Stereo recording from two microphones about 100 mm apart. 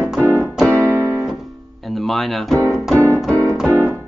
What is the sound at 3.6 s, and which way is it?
Keyboard, 20° left (ahead or behind).